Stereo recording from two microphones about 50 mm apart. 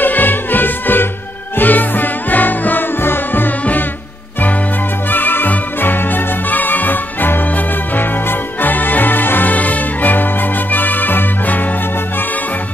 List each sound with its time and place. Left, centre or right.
0.0 s music: left
5.1 s music: left